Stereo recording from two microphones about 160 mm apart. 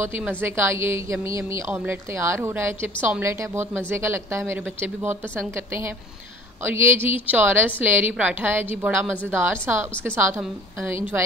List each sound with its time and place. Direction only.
0.0 s a woman's voice: 10° right (ahead or behind)
6.6 s a woman's voice: 15° right (ahead or behind)